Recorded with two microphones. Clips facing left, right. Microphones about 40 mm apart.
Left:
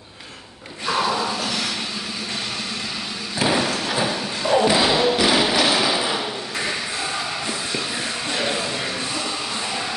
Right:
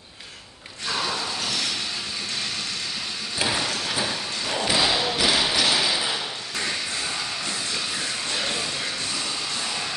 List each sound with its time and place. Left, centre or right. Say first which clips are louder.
1.0 s a sound: left 6 dB; left
3.4 s thump: left 6 dB; centre
4.6 s thump: left 5 dB; centre